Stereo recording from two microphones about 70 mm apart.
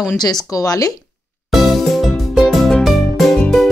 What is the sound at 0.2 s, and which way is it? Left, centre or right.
Speech, left.